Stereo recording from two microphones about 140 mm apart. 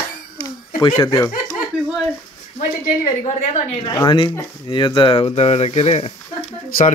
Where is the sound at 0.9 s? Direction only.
20° left (ahead or behind).